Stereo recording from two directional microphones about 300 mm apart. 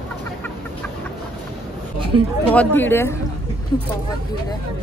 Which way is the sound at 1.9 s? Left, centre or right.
Centre.